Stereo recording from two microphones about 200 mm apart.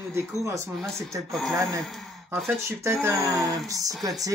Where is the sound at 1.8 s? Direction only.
Centre (ahead or behind).